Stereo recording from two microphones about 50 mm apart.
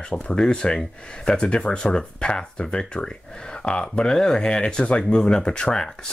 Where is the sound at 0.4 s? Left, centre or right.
Centre.